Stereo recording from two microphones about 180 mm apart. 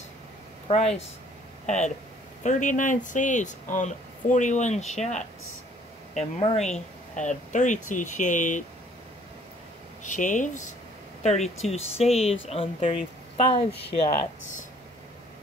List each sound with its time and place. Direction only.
0.7 s speech: 35° left (ahead or behind)
2.4 s speech: 45° left (ahead or behind)
6.5 s speech: 5° left (ahead or behind)
7.2 s speech: 45° left (ahead or behind)
10.0 s speech: 45° left (ahead or behind)